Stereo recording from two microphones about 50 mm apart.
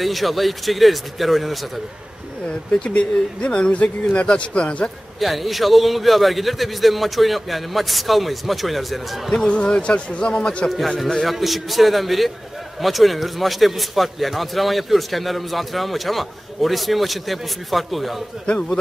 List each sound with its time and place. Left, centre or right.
0.0 s a man's voice: centre
2.4 s speech: centre
5.2 s a man's voice: centre
9.5 s speech: left
10.7 s a man's voice: centre